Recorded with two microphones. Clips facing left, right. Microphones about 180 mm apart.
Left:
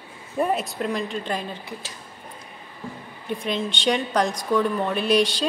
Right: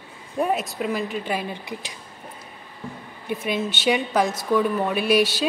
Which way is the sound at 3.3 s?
5° right (ahead or behind).